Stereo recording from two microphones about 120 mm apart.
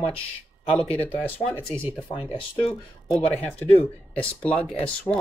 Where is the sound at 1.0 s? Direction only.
15° left (ahead or behind).